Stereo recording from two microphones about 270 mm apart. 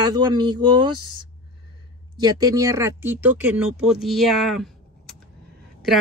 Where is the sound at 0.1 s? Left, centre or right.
Centre.